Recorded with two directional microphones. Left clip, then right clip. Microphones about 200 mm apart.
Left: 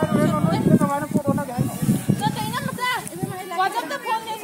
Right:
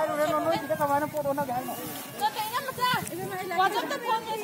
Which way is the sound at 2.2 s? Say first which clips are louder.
Even; 35° right (ahead or behind).